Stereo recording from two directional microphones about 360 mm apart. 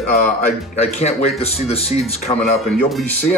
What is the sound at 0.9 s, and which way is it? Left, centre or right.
Speech, centre.